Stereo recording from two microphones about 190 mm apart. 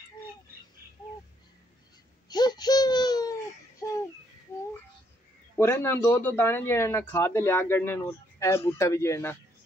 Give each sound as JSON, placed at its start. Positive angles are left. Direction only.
{"t": 2.2, "sound": "baby cry", "side_deg": 20}
{"t": 5.6, "sound": "speech", "side_deg": 10}